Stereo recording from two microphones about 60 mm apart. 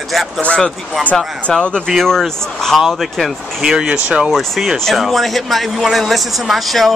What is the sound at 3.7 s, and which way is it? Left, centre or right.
Speech, centre.